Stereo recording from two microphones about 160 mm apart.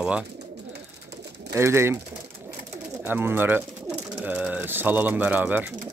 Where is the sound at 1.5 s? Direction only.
15° right (ahead or behind).